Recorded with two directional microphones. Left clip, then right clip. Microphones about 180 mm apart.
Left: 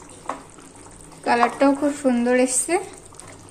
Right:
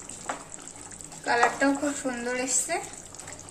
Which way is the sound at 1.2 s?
50° left (ahead or behind).